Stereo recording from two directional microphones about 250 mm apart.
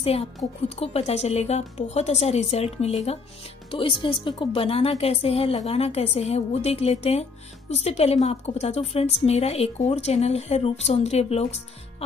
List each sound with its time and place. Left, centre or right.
0.0 s a woman's voice: left